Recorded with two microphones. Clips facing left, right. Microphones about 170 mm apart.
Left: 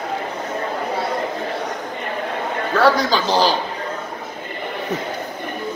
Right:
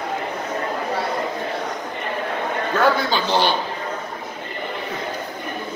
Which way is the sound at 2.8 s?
40° left (ahead or behind).